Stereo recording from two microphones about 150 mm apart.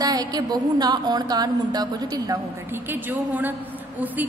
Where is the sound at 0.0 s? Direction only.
25° right (ahead or behind).